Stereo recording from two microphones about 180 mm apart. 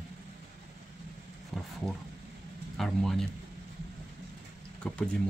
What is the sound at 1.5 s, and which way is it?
Speech, centre (ahead or behind).